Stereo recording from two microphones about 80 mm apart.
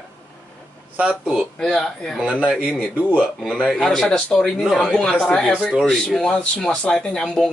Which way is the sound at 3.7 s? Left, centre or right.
Centre.